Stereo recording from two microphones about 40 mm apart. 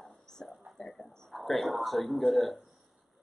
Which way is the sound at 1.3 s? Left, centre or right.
Centre.